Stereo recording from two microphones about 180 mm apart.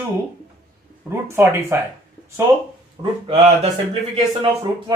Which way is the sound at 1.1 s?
15° right (ahead or behind).